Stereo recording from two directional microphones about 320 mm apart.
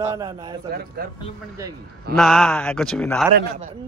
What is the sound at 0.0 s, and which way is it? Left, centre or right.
Speech, centre.